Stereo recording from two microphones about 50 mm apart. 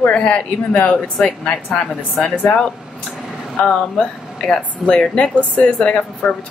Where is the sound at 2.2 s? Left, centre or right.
Left.